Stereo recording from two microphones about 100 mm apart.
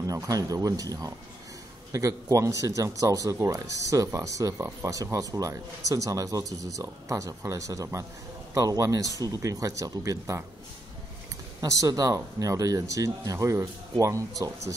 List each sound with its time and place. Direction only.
0.0 s speech: 35° right (ahead or behind)
11.6 s speech: 35° right (ahead or behind)